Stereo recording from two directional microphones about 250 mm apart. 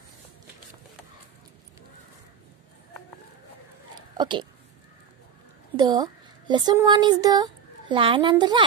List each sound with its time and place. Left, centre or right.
4.2 s speech: centre
5.8 s speech: centre